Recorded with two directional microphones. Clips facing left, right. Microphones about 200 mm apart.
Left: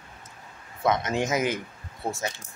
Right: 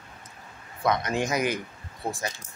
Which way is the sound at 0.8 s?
20° left (ahead or behind).